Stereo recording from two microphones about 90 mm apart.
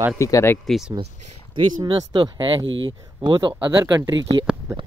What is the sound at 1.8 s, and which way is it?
Speech, 65° right (ahead or behind).